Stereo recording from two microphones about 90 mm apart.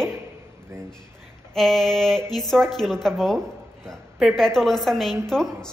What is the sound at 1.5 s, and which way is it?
A woman's voice, centre (ahead or behind).